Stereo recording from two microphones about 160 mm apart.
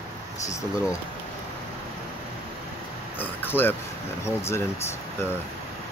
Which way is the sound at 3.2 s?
15° left (ahead or behind).